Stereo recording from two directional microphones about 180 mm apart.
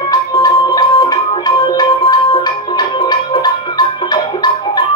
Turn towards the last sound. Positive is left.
turn(degrees=25)  # may be behind; listen again after turning